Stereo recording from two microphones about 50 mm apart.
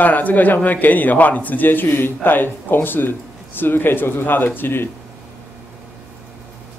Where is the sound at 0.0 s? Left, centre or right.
Left.